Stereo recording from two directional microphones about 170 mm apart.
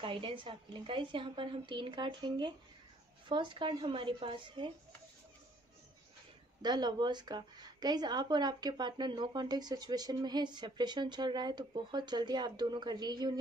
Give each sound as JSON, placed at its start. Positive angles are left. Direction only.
{"t": 0.0, "sound": "a woman's voice", "side_deg": -30}
{"t": 6.6, "sound": "a woman's voice", "side_deg": -25}